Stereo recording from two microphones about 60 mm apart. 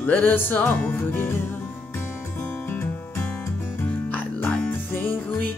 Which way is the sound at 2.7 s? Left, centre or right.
Left.